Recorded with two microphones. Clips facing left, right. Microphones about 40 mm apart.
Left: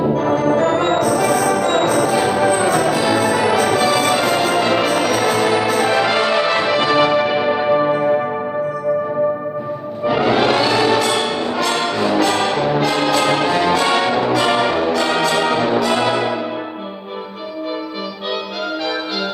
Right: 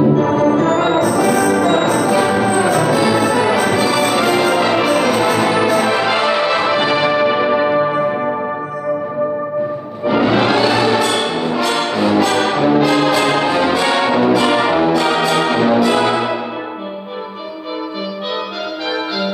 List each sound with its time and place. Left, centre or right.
0.2 s music: centre
2.1 s music: centre
2.4 s music: centre
10.0 s music: centre
11.1 s brass instrument: centre
14.1 s music: centre
14.7 s brass instrument: centre